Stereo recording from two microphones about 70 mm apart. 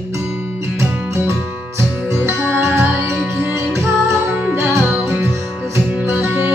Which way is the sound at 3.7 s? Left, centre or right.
Right.